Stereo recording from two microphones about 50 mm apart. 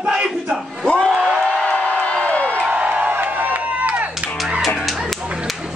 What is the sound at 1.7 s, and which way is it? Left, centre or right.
Crowd, left.